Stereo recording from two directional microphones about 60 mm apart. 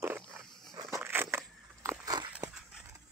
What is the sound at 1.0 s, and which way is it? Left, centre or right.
Crushing, right.